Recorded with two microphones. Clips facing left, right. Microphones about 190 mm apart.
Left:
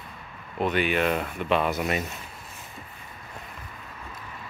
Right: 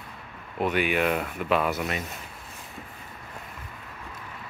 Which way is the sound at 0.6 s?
10° right (ahead or behind).